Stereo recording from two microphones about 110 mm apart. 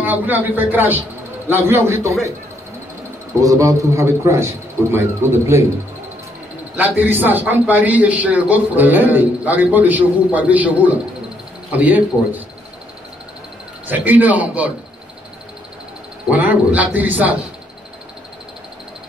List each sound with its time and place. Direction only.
0.0 s a man's voice: 15° right (ahead or behind)
3.3 s a man's voice: 30° right (ahead or behind)
6.8 s a man's voice: 15° right (ahead or behind)
13.8 s a man's voice: 15° right (ahead or behind)
16.3 s a man's voice: 15° right (ahead or behind)